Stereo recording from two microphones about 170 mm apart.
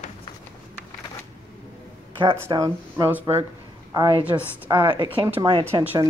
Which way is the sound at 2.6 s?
15° right (ahead or behind).